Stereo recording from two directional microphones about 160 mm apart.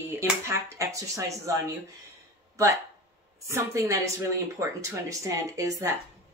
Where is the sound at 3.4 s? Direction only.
20° right (ahead or behind).